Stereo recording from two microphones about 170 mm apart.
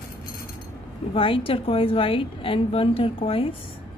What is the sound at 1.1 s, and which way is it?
A woman's voice, 30° left (ahead or behind).